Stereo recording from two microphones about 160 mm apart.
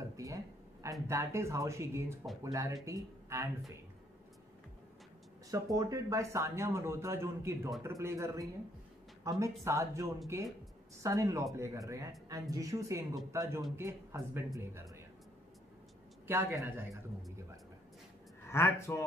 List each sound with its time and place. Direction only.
0.1 s a sound: 20° right (ahead or behind)
1.0 s speech: 15° right (ahead or behind)
5.5 s speech: 20° right (ahead or behind)
16.3 s speech: 15° right (ahead or behind)
18.5 s speech: 15° left (ahead or behind)